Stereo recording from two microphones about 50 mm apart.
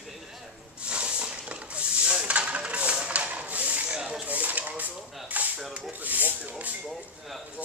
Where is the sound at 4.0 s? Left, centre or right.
Centre.